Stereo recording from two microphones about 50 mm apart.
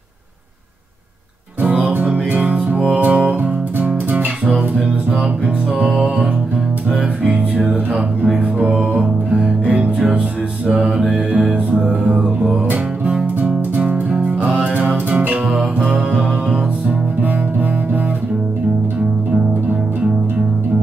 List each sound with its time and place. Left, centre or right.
1.6 s music: right
4.5 s music: centre
5.8 s music: right
7.2 s music: right
15.5 s music: right